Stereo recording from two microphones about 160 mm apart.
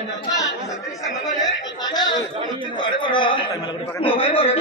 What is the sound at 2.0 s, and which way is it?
Chatter, 25° left (ahead or behind).